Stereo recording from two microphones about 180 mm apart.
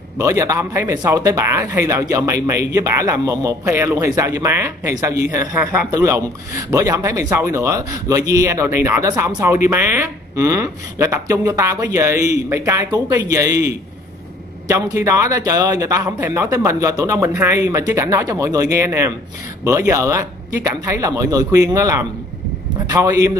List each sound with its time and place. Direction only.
0.2 s a man's voice: 15° right (ahead or behind)